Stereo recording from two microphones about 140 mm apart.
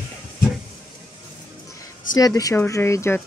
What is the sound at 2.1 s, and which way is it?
Speech, 25° left (ahead or behind).